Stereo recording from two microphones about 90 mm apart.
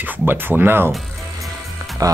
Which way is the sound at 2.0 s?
40° right (ahead or behind).